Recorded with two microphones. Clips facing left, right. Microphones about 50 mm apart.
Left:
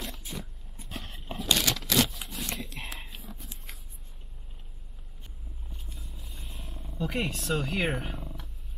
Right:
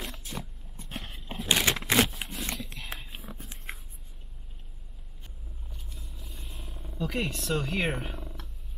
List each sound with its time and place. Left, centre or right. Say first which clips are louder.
0.0 s vehicle: right 1 dB; centre
1.3 s a sound: right 2 dB; right
2.8 s biting: left 2 dB; left
3.3 s a sound: right 4 dB; right
5.7 s vehicle: left 1 dB; centre
7.1 s speech: even; centre